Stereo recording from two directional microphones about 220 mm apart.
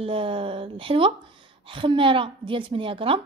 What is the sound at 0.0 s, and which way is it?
A woman's voice, 25° right (ahead or behind).